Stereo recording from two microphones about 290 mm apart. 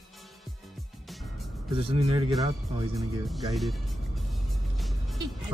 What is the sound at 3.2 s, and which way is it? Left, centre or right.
Speech, centre.